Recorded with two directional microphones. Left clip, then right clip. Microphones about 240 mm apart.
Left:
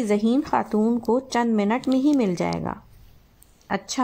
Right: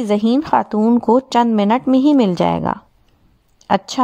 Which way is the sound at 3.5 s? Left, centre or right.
Right.